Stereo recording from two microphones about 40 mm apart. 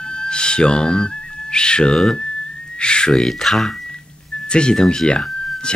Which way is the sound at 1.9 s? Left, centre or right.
Centre.